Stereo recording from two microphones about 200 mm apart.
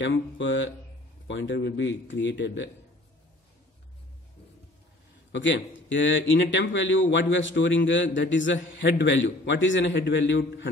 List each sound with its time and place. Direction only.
0.0 s a man's voice: 70° left (ahead or behind)
5.3 s a man's voice: 65° left (ahead or behind)